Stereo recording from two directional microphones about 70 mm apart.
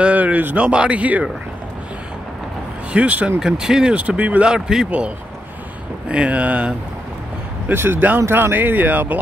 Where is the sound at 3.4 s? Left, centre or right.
Centre.